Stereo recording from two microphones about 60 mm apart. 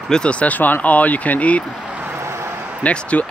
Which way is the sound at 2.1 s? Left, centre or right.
Right.